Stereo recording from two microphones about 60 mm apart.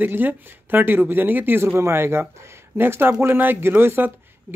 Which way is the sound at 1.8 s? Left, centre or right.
Right.